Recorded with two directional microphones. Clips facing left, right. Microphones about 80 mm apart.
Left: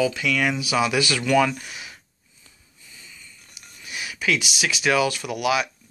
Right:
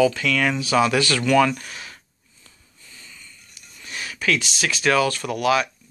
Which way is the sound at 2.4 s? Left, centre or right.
Centre.